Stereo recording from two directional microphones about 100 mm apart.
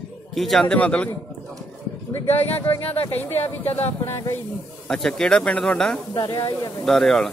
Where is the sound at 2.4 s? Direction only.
20° left (ahead or behind).